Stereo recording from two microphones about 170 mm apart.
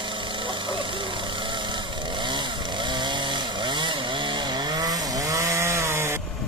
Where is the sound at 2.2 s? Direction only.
25° right (ahead or behind).